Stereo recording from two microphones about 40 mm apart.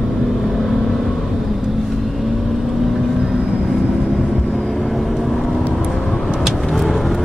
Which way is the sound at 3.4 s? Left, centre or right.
Right.